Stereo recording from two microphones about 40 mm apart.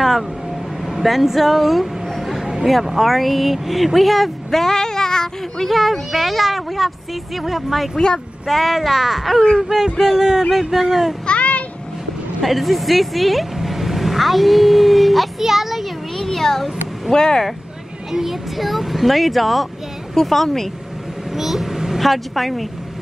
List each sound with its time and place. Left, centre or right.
0.8 s a sound: centre
2.6 s speech: centre
5.7 s speech: centre
9.7 s speech: centre
11.2 s a sound: left
12.4 s speech: centre
16.2 s a sound: centre
17.1 s speech: centre
18.1 s speech: centre
21.4 s speech: centre